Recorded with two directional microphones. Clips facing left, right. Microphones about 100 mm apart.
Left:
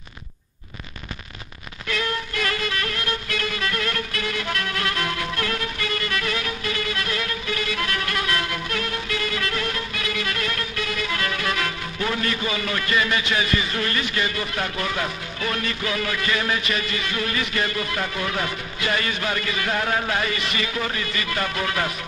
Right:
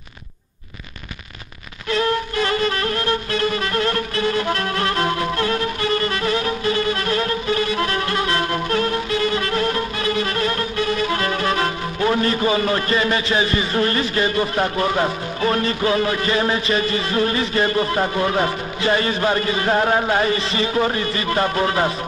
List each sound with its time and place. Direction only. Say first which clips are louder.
1.9 s music: right 7 dB; 30° right (ahead or behind)